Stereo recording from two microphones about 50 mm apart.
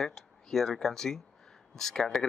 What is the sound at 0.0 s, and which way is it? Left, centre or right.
Speech, centre.